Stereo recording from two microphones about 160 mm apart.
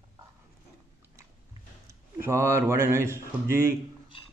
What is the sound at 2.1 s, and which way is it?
A man's voice, 15° right (ahead or behind).